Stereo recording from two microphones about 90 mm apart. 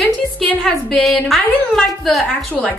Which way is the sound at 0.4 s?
10° left (ahead or behind).